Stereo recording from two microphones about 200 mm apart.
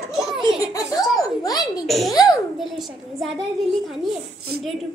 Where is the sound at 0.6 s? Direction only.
15° left (ahead or behind).